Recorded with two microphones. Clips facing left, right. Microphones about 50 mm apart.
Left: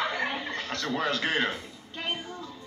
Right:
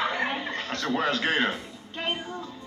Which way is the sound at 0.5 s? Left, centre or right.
Right.